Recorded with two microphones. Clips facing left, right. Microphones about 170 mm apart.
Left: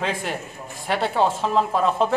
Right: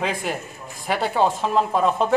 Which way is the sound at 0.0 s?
Centre (ahead or behind).